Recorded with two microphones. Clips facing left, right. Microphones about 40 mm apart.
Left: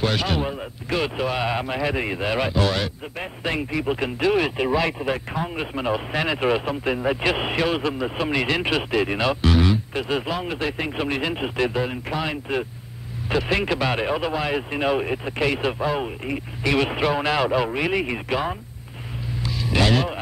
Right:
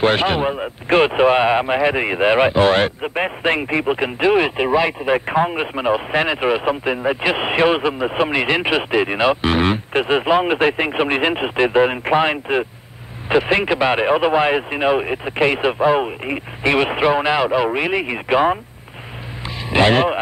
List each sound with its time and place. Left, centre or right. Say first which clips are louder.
0.0 s speech: right 7 dB; right
5.3 s speech: right 9 dB; right
5.8 s speech: right 6 dB; right
11.8 s speech: right 10 dB; right
19.7 s speech: right 7 dB; right